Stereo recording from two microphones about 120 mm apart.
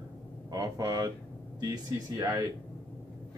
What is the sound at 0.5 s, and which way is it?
Speech, 30° right (ahead or behind).